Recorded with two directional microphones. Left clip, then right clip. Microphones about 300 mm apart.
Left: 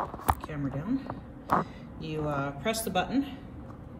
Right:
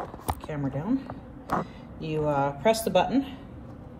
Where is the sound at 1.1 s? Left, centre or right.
Right.